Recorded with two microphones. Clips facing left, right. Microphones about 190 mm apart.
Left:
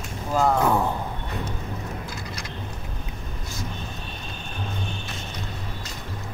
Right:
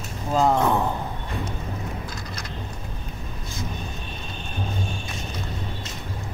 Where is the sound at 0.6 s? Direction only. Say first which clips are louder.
Even; 5° left (ahead or behind).